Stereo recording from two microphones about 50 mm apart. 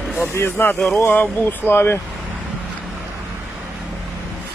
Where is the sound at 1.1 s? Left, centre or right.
Left.